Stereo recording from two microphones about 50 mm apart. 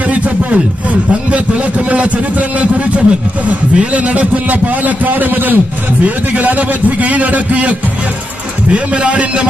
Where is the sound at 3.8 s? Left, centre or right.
Right.